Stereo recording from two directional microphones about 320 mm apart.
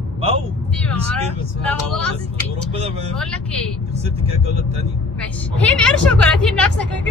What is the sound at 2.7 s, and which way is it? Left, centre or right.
Speech, centre.